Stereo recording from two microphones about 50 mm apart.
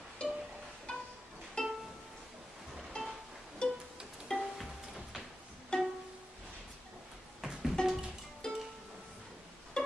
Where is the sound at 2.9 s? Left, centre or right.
Centre.